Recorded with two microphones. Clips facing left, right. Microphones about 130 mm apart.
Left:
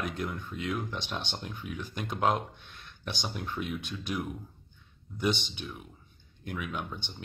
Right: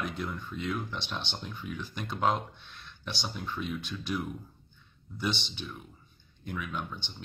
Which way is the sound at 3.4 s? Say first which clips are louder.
Right 1 dB; 55° left (ahead or behind).